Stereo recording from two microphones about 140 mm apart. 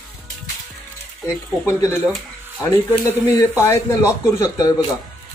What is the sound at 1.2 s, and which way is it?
A man's voice, 20° left (ahead or behind).